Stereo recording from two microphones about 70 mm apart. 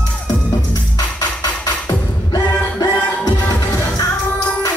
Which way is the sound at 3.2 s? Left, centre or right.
Left.